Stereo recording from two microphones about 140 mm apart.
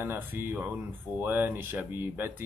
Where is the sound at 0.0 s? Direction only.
15° right (ahead or behind).